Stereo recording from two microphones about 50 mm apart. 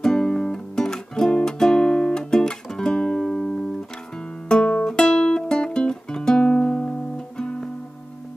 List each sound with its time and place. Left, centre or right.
0.0 s music: centre